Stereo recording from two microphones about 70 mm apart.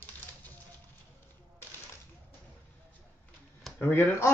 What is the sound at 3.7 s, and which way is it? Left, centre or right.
Speech, left.